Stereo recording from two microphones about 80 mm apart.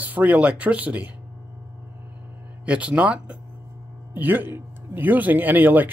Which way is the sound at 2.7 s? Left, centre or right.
Centre.